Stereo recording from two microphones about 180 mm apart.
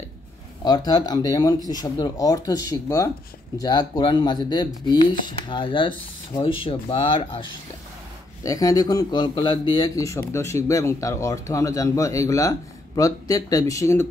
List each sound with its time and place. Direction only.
0.7 s speech: 20° left (ahead or behind)
8.5 s speech: 20° left (ahead or behind)